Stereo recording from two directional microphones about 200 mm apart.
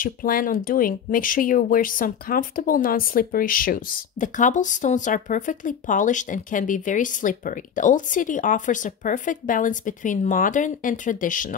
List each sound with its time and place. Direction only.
0.0 s speech: 45° left (ahead or behind)